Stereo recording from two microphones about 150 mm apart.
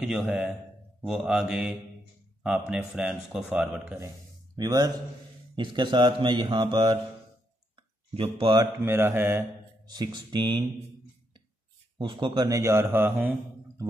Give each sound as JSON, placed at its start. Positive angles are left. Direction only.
{"t": 0.0, "sound": "a man's voice", "side_deg": 0}
{"t": 1.0, "sound": "mantra", "side_deg": -5}
{"t": 2.4, "sound": "a man's voice", "side_deg": -5}
{"t": 4.6, "sound": "a man's voice", "side_deg": -25}
{"t": 8.1, "sound": "speech", "side_deg": -40}
{"t": 8.8, "sound": "a man's voice", "side_deg": -15}
{"t": 9.8, "sound": "a man's voice", "side_deg": -30}
{"t": 12.0, "sound": "a man's voice", "side_deg": -30}